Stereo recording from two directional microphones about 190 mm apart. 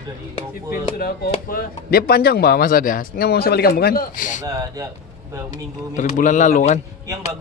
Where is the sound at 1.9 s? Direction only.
55° left (ahead or behind).